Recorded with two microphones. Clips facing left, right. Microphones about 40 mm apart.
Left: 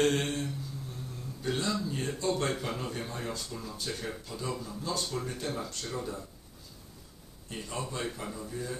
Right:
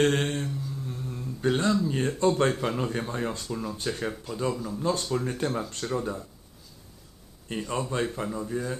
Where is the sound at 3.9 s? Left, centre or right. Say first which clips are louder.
Right 6 dB; right.